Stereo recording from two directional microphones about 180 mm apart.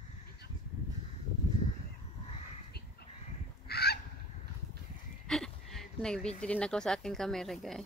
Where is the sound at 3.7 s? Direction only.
60° left (ahead or behind).